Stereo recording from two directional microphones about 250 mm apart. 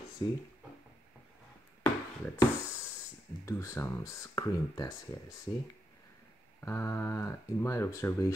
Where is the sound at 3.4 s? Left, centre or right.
Centre.